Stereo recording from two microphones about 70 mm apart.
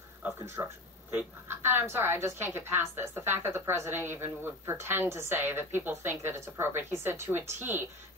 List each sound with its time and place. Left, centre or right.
0.6 s a woman's voice: right